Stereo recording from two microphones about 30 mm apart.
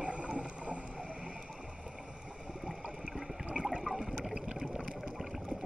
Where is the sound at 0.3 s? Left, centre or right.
Right.